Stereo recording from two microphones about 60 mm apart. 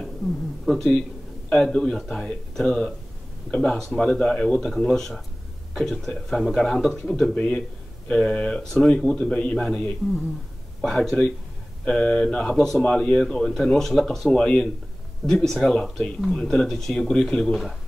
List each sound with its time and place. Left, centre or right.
0.7 s speech: centre
8.1 s speech: centre
8.6 s speech: centre
11.8 s speech: left
12.5 s speech: centre